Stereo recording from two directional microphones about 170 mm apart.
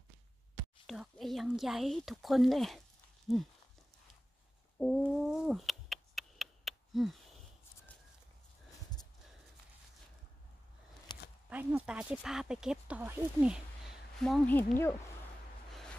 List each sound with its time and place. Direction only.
0.8 s speech: centre (ahead or behind)
4.7 s cat: 5° left (ahead or behind)
11.1 s a sound: 25° left (ahead or behind)
11.4 s speech: 5° right (ahead or behind)
14.2 s speech: 5° left (ahead or behind)